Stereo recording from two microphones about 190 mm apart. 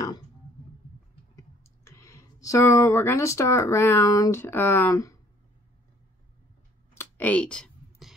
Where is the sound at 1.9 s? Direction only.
15° left (ahead or behind).